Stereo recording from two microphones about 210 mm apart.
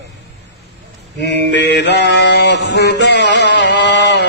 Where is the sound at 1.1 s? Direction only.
55° left (ahead or behind).